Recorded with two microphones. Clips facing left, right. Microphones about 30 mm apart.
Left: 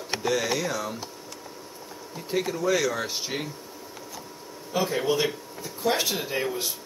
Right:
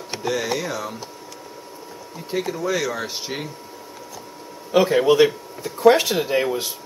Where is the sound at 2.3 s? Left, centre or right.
Centre.